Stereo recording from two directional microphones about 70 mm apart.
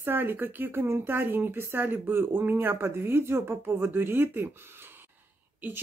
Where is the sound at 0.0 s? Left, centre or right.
Right.